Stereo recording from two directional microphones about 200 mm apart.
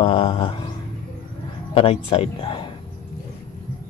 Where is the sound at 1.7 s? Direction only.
30° left (ahead or behind).